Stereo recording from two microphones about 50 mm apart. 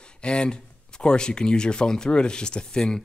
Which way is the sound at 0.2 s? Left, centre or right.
Centre.